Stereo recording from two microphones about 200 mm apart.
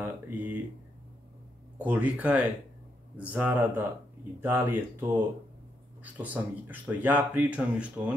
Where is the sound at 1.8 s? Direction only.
5° right (ahead or behind).